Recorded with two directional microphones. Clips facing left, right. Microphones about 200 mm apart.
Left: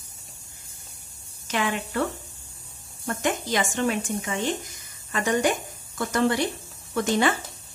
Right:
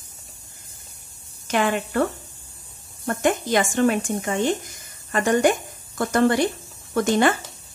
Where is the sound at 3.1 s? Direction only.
50° right (ahead or behind).